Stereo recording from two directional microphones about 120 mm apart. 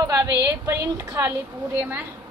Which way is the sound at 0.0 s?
30° right (ahead or behind).